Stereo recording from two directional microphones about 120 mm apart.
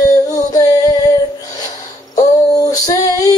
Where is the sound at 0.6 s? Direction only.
30° left (ahead or behind).